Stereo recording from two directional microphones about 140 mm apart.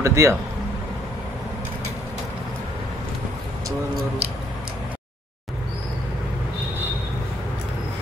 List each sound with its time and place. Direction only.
0.0 s speech: 20° right (ahead or behind)